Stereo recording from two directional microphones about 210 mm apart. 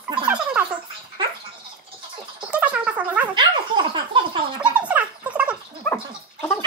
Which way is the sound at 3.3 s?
20° right (ahead or behind).